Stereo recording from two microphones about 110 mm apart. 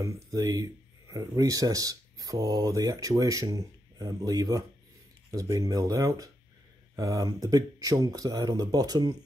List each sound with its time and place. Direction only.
0.0 s speech: 30° right (ahead or behind)